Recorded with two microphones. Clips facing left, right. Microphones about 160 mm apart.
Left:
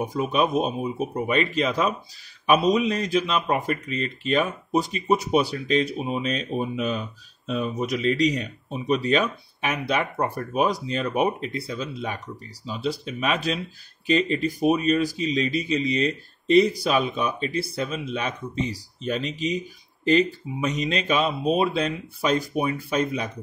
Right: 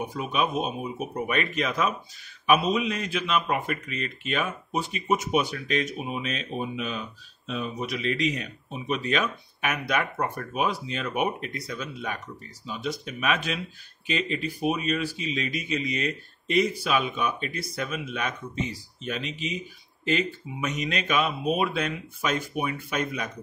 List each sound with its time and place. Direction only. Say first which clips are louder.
0.0 s a man's voice: left 4 dB; 40° left (ahead or behind)
20.6 s a man's voice: left 4 dB; 30° left (ahead or behind)